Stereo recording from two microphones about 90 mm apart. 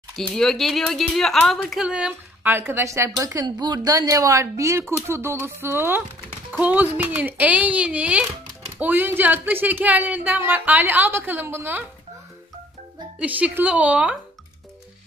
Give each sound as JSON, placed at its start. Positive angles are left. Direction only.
{"t": 0.3, "sound": "a woman's voice", "side_deg": 5}
{"t": 2.4, "sound": "speech", "side_deg": -25}
{"t": 3.4, "sound": "speech", "side_deg": -50}
{"t": 13.2, "sound": "speech", "side_deg": -15}